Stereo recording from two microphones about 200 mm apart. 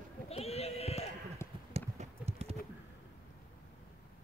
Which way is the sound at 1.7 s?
30° right (ahead or behind).